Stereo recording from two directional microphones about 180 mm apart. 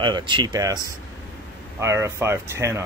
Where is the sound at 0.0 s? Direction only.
25° right (ahead or behind).